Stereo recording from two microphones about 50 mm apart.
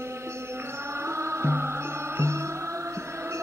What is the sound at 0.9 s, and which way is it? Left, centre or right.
Music, right.